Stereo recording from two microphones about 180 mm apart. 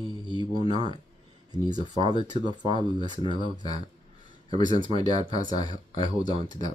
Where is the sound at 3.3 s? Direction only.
25° right (ahead or behind).